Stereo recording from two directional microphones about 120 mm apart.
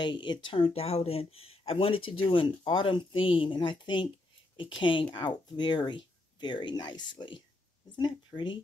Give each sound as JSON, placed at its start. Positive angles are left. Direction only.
{"t": 0.0, "sound": "speech", "side_deg": 40}